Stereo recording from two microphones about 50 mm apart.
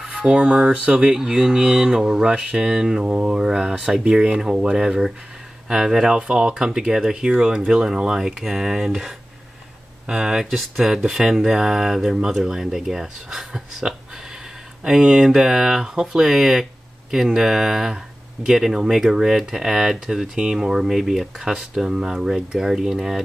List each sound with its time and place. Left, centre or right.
0.0 s speech: centre
14.8 s speech: centre